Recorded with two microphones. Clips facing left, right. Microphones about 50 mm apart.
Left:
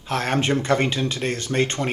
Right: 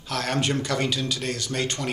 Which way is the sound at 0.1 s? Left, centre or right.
Left.